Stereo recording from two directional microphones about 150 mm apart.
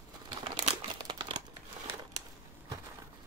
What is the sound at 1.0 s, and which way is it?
Crumpling, 30° right (ahead or behind).